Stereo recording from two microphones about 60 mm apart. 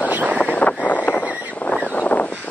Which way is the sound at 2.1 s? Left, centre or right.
Left.